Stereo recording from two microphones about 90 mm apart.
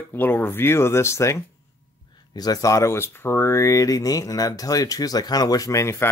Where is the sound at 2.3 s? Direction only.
45° left (ahead or behind).